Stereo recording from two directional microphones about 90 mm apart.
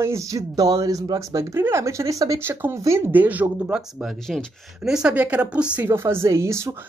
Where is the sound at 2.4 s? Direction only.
25° right (ahead or behind).